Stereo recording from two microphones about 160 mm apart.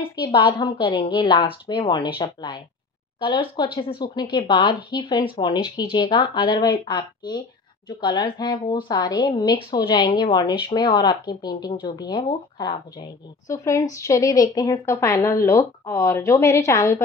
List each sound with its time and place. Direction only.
0.3 s a woman's voice: 30° left (ahead or behind)